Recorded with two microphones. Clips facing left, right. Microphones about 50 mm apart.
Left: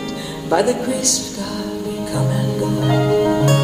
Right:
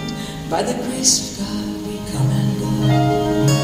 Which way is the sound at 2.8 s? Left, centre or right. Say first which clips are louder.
Left 1 dB; centre.